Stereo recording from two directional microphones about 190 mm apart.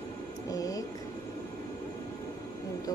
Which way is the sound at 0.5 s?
20° left (ahead or behind).